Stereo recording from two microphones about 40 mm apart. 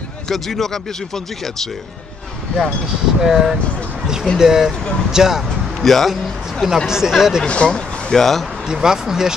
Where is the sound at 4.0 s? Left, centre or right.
Centre.